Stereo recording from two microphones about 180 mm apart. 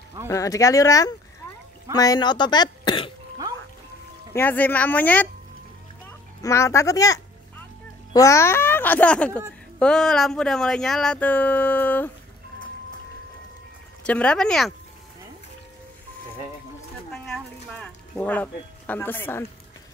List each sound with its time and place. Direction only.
0.3 s speech: 20° left (ahead or behind)
4.3 s a child's voice: 10° left (ahead or behind)
6.4 s a child's voice: 15° left (ahead or behind)
14.0 s speech: 5° left (ahead or behind)
17.1 s a sound: 5° left (ahead or behind)